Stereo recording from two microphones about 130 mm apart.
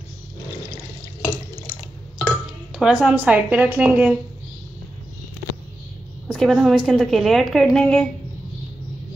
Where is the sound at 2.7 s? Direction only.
5° right (ahead or behind).